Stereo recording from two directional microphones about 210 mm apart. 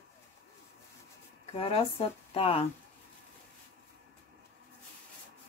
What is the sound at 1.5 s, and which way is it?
Speech, 30° left (ahead or behind).